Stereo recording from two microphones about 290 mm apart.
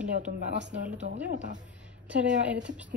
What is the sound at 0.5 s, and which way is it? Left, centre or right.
Speech, right.